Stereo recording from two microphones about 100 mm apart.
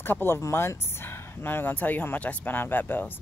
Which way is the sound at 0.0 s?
20° left (ahead or behind).